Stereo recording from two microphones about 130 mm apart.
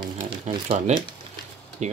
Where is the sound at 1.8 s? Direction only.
60° right (ahead or behind).